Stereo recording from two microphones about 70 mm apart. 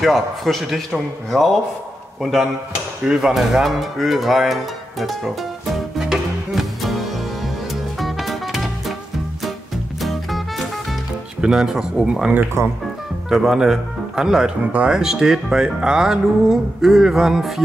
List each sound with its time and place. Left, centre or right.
0.0 s a man's voice: centre
3.1 s music: centre
9.9 s music: centre
11.4 s speech: centre
12.6 s speech: right
13.3 s speech: centre